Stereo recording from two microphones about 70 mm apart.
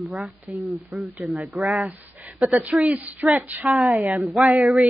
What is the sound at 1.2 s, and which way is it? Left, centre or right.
Speech, centre.